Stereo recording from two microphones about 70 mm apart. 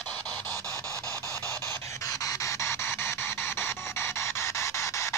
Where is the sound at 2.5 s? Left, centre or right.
Left.